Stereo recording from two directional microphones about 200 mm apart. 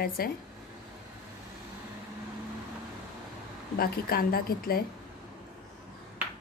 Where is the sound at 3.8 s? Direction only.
50° left (ahead or behind).